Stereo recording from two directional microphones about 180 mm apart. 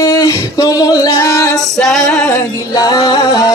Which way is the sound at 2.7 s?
20° left (ahead or behind).